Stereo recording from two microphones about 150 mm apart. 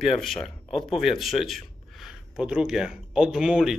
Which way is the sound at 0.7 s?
35° left (ahead or behind).